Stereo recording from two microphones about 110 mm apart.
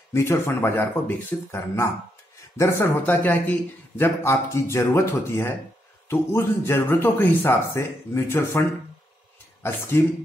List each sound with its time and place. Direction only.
0.1 s speech: 25° left (ahead or behind)